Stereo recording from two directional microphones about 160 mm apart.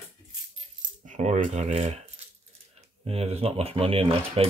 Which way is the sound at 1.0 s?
50° right (ahead or behind).